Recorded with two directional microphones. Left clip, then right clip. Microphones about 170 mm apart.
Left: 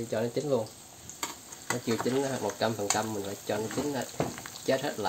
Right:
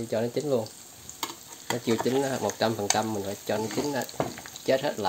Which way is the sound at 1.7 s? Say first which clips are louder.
Right 3 dB; 35° right (ahead or behind).